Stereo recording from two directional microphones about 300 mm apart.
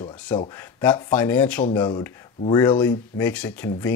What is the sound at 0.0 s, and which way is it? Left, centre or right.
Speech, centre.